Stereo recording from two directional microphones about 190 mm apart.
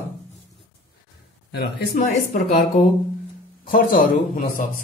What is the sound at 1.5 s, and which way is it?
Speech, 55° left (ahead or behind).